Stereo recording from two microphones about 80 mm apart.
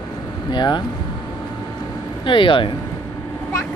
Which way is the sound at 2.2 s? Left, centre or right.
Left.